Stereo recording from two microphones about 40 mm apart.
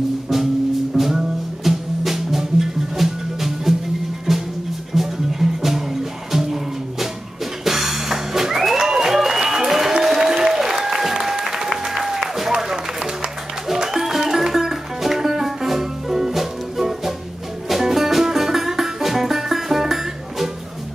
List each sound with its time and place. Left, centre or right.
0.9 s music: centre
10.0 s applause: centre
13.7 s music: centre